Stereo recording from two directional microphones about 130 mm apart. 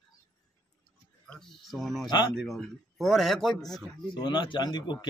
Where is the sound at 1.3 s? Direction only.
5° left (ahead or behind).